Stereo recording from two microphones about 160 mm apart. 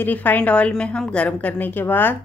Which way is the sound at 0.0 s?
10° left (ahead or behind).